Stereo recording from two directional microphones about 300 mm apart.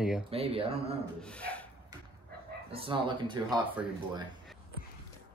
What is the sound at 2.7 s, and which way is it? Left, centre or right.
Speech, centre.